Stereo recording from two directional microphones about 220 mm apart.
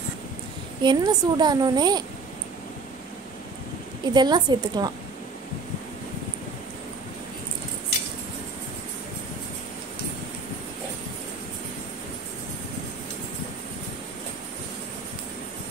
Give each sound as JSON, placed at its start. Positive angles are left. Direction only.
{"t": 0.8, "sound": "a woman's voice", "side_deg": -20}
{"t": 4.0, "sound": "a woman's voice", "side_deg": -20}